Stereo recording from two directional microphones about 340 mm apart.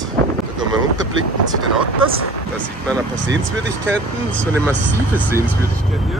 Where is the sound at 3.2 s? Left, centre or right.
Right.